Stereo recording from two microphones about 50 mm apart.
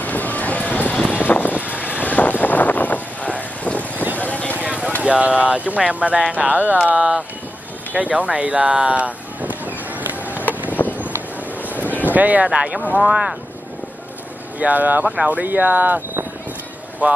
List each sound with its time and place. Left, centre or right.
0.0 s vehicle: left
2.4 s a sound: left
4.2 s vehicle: left
4.6 s vehicle: right
5.0 s speech: right
7.9 s a sound: right
10.7 s a sound: left
11.7 s boat: right
12.4 s speech: right
14.6 s speech: right
17.0 s speech: right